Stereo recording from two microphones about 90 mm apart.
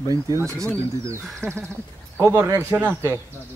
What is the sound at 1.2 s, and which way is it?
Speech, 10° left (ahead or behind).